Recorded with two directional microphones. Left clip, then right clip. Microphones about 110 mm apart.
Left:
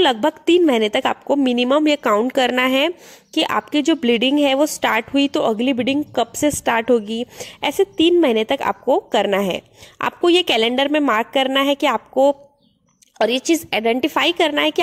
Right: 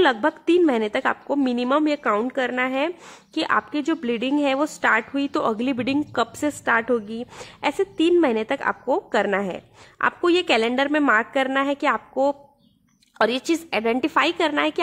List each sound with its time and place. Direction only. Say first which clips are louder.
0.0 s a woman's voice: left 3 dB; 35° left (ahead or behind)
2.0 s a woman's voice: left 6 dB; 50° left (ahead or behind)
3.3 s a woman's voice: left 4 dB; 30° left (ahead or behind); by 5.9 s 15° left (ahead or behind)
6.6 s a woman's voice: left 2 dB; 40° left (ahead or behind); by 9.2 s 20° left (ahead or behind)
9.2 s a woman's voice: left 5 dB; 30° left (ahead or behind)
13.2 s a woman's voice: left 4 dB; 15° left (ahead or behind)